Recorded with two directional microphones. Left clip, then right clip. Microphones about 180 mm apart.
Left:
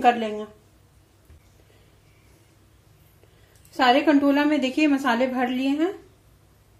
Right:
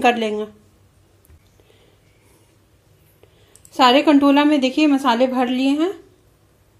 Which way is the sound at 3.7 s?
40° right (ahead or behind).